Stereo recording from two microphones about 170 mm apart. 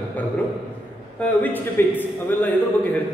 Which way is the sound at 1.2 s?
10° left (ahead or behind).